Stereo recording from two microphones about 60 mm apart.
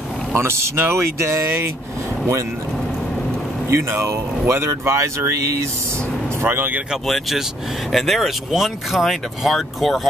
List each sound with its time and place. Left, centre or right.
0.3 s speech: right
3.9 s speech: right
6.4 s speech: right
7.1 s speech: centre